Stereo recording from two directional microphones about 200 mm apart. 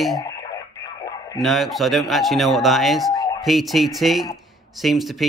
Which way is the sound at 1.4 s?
Centre (ahead or behind).